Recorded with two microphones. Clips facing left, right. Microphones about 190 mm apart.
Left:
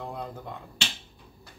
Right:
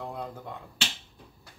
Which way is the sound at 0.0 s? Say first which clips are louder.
Even; 5° right (ahead or behind).